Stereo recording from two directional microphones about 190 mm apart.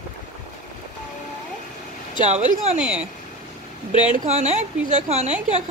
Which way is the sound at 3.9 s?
40° right (ahead or behind).